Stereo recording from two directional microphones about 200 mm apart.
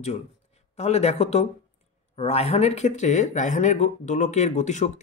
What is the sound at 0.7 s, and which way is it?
Speech, 35° left (ahead or behind).